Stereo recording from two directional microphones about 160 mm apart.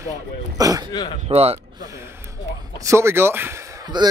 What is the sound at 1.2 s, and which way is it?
Speech, 40° right (ahead or behind).